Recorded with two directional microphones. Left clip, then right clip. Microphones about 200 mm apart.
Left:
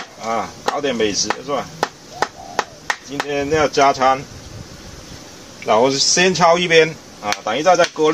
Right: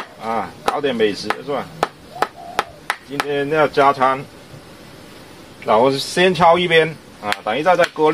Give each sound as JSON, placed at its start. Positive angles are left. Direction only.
{"t": 0.2, "sound": "chop", "side_deg": -15}
{"t": 3.5, "sound": "speech", "side_deg": -20}
{"t": 5.7, "sound": "speech", "side_deg": -20}